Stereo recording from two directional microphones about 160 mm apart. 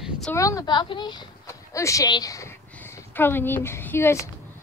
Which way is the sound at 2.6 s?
15° left (ahead or behind).